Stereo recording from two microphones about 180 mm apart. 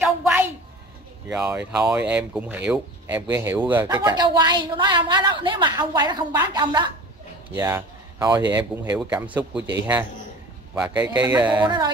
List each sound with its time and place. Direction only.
0.0 s a sound: 10° right (ahead or behind)
1.3 s speech: 5° right (ahead or behind)
8.5 s speech: 10° right (ahead or behind)
10.7 s speech: 10° right (ahead or behind)
11.6 s speech: 25° right (ahead or behind)